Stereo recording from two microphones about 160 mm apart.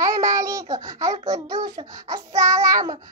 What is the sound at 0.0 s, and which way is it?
Child singing, 20° right (ahead or behind).